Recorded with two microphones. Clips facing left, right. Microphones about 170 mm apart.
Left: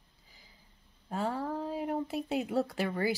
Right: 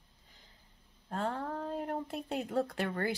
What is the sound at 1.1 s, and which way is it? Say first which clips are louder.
Speech: left 2 dB; 5° left (ahead or behind).